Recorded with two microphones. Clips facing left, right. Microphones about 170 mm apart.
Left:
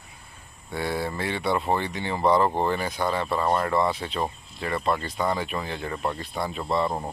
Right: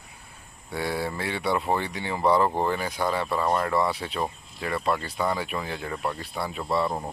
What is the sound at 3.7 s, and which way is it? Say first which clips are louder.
Speech: left 1 dB; 10° right (ahead or behind).